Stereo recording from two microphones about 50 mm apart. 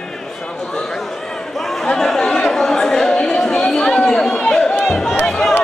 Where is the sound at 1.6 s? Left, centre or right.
Centre.